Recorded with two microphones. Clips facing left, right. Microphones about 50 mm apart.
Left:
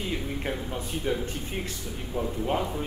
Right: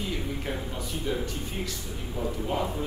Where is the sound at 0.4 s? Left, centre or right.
Left.